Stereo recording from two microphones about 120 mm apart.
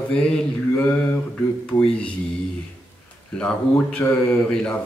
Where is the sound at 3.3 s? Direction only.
10° left (ahead or behind).